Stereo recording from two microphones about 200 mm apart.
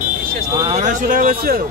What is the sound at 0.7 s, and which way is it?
Speech, 40° right (ahead or behind).